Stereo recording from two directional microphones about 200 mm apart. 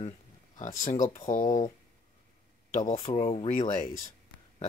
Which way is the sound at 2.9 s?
30° left (ahead or behind).